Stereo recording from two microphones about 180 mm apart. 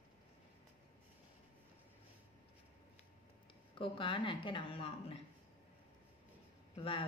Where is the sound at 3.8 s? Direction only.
30° left (ahead or behind).